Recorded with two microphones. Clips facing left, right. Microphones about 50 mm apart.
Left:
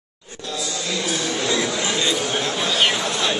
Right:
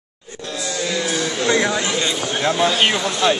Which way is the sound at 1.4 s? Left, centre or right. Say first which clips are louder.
Right 6 dB; right.